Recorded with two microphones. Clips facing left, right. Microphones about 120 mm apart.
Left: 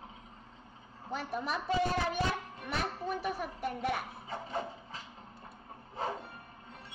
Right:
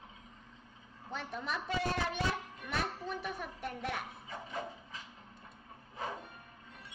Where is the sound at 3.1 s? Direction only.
5° left (ahead or behind).